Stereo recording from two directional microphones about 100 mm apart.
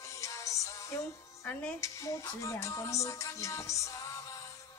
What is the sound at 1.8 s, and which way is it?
Music, 30° left (ahead or behind).